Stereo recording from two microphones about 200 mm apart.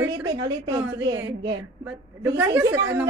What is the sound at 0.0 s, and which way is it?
A woman's voice, 20° right (ahead or behind).